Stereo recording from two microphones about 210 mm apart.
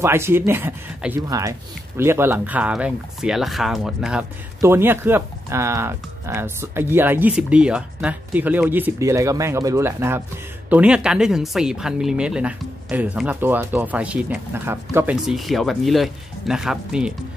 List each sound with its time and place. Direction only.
0.0 s speech: 10° right (ahead or behind)